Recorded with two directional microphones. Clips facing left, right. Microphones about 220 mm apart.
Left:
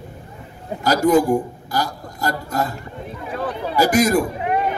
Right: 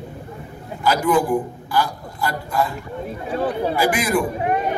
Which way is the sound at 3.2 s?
30° right (ahead or behind).